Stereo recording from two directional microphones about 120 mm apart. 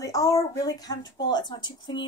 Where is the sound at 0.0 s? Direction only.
30° left (ahead or behind).